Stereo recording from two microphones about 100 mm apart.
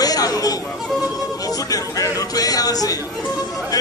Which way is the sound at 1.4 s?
40° left (ahead or behind).